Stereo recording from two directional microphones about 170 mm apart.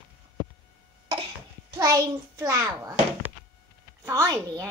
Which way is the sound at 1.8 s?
20° right (ahead or behind).